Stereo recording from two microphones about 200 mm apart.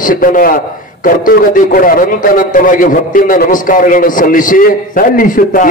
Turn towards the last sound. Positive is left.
turn(degrees=45)  # may be behind; listen again after turning